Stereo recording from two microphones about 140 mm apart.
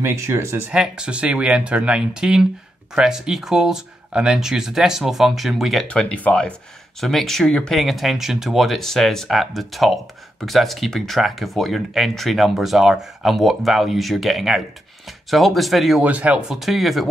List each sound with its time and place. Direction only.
0.0 s speech: 20° right (ahead or behind)
0.7 s speech: 5° right (ahead or behind)